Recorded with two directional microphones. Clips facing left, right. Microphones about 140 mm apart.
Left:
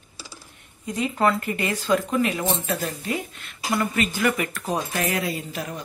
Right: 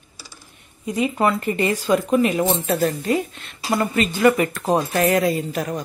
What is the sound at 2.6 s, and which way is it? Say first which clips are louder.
Speech: right 7 dB; 40° right (ahead or behind).